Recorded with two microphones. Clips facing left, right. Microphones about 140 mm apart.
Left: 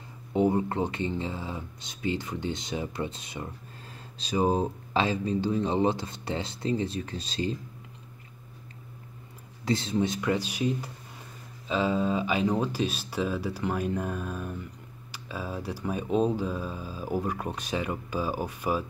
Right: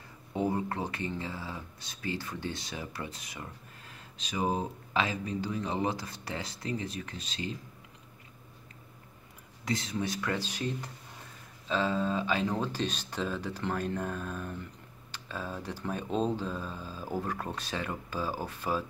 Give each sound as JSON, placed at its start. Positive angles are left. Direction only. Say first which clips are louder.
{"t": 0.3, "sound": "speech", "louder": "left 6 dB", "side_deg": 20}
{"t": 9.7, "sound": "speech", "louder": "left 6 dB", "side_deg": 30}